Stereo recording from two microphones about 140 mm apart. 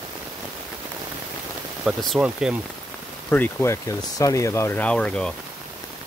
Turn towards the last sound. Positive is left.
turn(degrees=5)  # may be behind; listen again after turning